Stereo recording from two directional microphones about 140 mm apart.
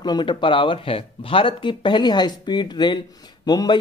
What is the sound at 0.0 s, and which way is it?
Speech, 30° left (ahead or behind).